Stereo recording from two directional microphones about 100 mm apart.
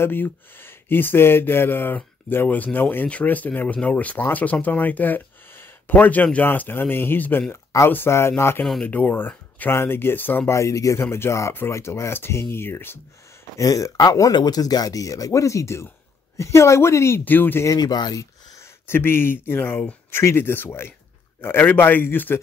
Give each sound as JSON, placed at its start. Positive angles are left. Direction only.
{"t": 0.0, "sound": "speech", "side_deg": 20}
{"t": 13.6, "sound": "speech", "side_deg": 35}
{"t": 17.6, "sound": "speech", "side_deg": 40}
{"t": 18.6, "sound": "speech", "side_deg": 25}